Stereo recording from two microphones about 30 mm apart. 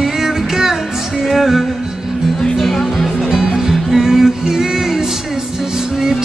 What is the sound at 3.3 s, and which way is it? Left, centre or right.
Music, centre.